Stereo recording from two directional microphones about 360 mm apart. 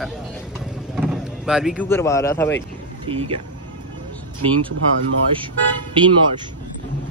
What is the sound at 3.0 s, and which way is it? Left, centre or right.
Speech, centre.